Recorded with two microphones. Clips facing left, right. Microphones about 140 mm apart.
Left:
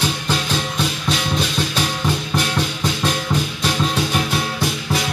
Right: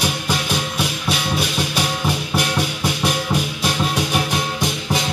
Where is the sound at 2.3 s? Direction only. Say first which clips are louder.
Even; 10° right (ahead or behind).